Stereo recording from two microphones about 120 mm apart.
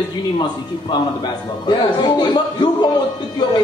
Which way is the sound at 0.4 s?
40° left (ahead or behind).